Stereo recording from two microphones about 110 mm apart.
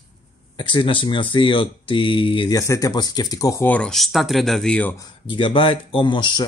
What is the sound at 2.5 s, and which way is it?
Speech, 30° left (ahead or behind).